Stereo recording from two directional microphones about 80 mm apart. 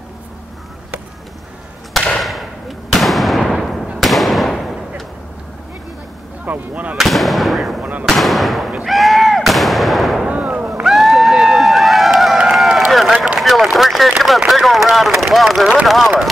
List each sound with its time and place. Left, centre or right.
2.1 s a sound: centre
2.9 s fireworks: centre
4.0 s firecracker: centre
6.4 s speech: right
7.0 s fireworks: centre
7.8 s fireworks: centre
8.1 s speech: centre
8.8 s artillery fire: centre
10.2 s a sound: centre
12.9 s run: centre
13.4 s a sound: centre
14.5 s speech: centre